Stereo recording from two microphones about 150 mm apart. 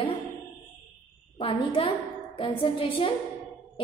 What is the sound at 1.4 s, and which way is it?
A woman's voice, 35° left (ahead or behind).